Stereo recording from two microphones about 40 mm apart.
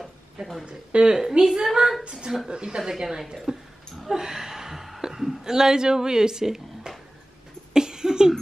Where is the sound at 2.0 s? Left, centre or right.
Centre.